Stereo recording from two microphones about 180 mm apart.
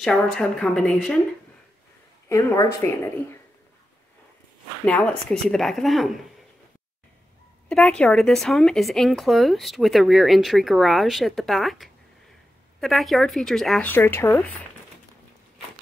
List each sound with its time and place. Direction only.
0.0 s speech: 5° left (ahead or behind)
2.2 s a woman's voice: 15° left (ahead or behind)
4.8 s speech: 5° left (ahead or behind)
7.6 s speech: 5° left (ahead or behind)